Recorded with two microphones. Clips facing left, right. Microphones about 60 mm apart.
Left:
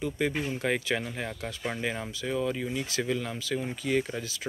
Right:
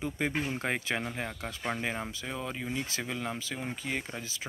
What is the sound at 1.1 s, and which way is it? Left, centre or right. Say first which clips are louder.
Speech: left 2 dB; centre.